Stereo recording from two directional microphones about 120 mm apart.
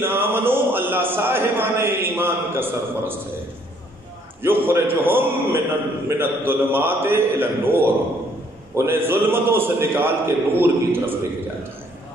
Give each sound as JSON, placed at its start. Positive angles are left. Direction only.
{"t": 0.0, "sound": "a man's voice", "side_deg": -20}
{"t": 4.4, "sound": "a man's voice", "side_deg": -20}